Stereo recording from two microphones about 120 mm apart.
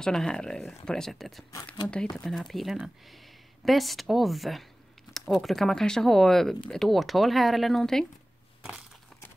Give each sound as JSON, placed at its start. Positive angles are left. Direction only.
{"t": 0.0, "sound": "speech", "side_deg": 5}
{"t": 1.8, "sound": "speech", "side_deg": 15}
{"t": 2.2, "sound": "speech", "side_deg": 0}